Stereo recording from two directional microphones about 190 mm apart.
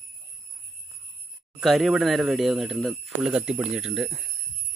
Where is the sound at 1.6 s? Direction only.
Centre (ahead or behind).